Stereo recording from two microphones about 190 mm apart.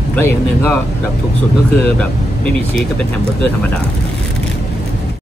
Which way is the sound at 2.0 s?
5° left (ahead or behind).